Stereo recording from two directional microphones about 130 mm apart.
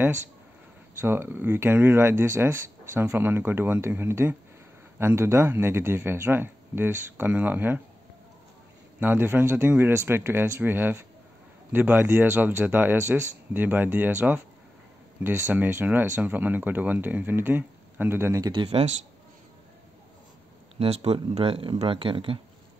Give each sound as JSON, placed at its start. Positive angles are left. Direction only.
{"t": 1.0, "sound": "speech", "side_deg": -15}
{"t": 9.0, "sound": "speech", "side_deg": -15}
{"t": 18.4, "sound": "speech", "side_deg": -35}
{"t": 20.8, "sound": "speech", "side_deg": -50}